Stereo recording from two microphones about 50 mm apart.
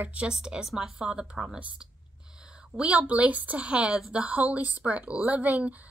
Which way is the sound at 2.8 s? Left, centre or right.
Right.